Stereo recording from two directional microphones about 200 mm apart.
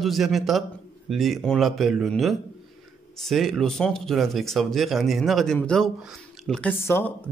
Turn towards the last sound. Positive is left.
turn(degrees=10)  # may be behind; listen again after turning